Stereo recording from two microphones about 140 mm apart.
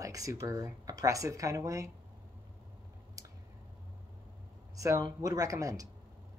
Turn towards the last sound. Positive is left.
turn(degrees=-25)  # may be behind; listen again after turning